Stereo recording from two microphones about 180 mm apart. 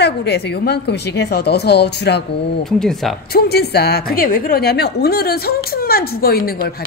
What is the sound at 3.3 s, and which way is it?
A woman's voice, 60° left (ahead or behind).